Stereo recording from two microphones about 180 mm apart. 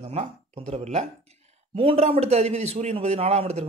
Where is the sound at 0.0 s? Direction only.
35° right (ahead or behind).